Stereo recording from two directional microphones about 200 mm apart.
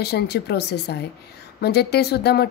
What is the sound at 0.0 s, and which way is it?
A woman's voice, 55° left (ahead or behind).